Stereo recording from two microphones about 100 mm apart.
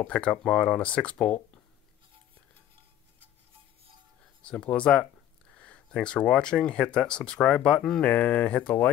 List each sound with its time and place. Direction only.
0.0 s speech: 10° left (ahead or behind)
4.4 s speech: 10° left (ahead or behind)